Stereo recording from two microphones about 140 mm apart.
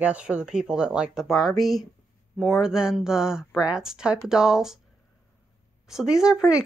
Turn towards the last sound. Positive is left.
turn(degrees=-5)  # may be behind; listen again after turning